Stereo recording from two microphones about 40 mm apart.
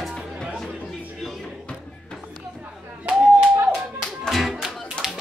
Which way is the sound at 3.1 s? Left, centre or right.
Right.